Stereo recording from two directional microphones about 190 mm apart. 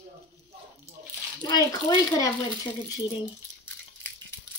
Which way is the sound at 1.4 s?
20° left (ahead or behind).